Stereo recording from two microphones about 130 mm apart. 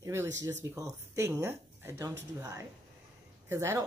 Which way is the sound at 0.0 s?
20° right (ahead or behind).